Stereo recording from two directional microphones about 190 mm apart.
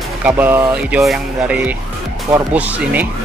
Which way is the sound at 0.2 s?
10° right (ahead or behind).